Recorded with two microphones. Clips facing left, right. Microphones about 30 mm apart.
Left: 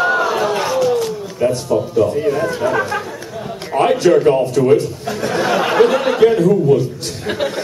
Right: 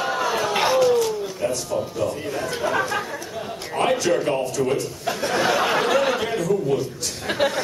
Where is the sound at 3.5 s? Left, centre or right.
Centre.